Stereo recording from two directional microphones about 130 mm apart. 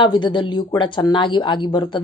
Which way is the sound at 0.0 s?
35° left (ahead or behind).